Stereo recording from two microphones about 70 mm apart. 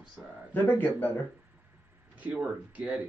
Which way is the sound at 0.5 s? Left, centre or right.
Left.